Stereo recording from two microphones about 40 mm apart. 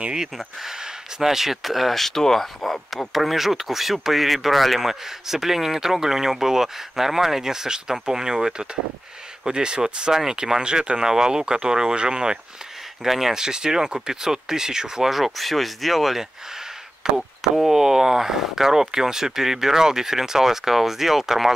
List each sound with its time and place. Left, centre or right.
0.1 s speech: centre
13.0 s speech: centre